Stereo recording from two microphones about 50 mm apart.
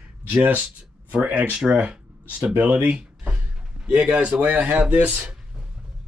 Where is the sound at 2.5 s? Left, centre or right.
Right.